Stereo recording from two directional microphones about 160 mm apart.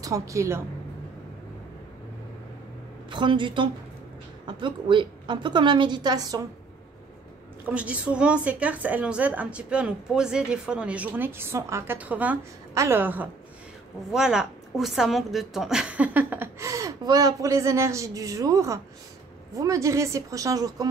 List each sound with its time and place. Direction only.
0.0 s a woman's voice: 20° right (ahead or behind)
3.1 s a woman's voice: 30° right (ahead or behind)
7.6 s a woman's voice: 10° right (ahead or behind)